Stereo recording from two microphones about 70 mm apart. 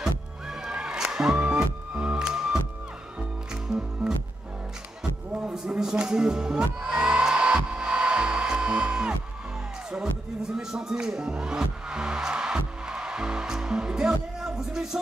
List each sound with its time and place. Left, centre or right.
0.0 s music: centre
3.6 s music: centre
5.3 s music: centre
10.5 s music: centre